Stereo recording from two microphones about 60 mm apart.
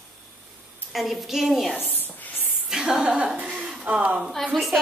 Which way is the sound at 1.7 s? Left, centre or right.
Left.